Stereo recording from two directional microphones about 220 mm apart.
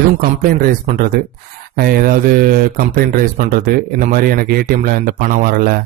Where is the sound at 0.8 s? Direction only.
40° right (ahead or behind).